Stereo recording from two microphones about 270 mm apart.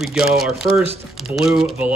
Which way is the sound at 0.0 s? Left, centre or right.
Centre.